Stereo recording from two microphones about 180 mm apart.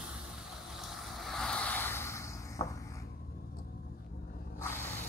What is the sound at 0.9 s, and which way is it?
Vehicle, centre (ahead or behind).